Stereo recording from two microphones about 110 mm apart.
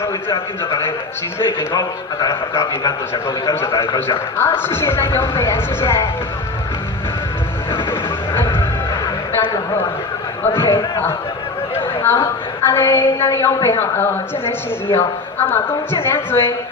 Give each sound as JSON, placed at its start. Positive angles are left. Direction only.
{"t": 1.6, "sound": "a man's voice", "side_deg": 35}
{"t": 8.4, "sound": "music", "side_deg": 25}
{"t": 10.4, "sound": "a man's voice", "side_deg": 20}
{"t": 11.7, "sound": "chatter", "side_deg": 20}
{"t": 12.6, "sound": "a man's voice", "side_deg": 25}